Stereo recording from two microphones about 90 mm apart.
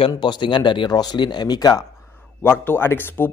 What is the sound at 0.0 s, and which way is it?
Speech, 60° left (ahead or behind).